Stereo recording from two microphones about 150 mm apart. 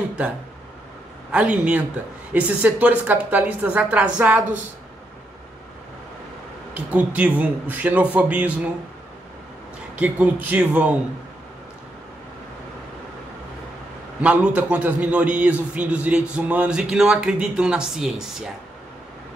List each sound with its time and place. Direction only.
1.3 s a man's voice: 10° right (ahead or behind)
6.7 s a man's voice: 10° right (ahead or behind)
9.9 s a man's voice: 10° right (ahead or behind)
14.2 s a man's voice: 10° right (ahead or behind)